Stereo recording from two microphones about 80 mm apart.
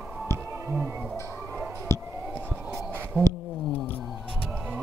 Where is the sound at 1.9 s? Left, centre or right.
Left.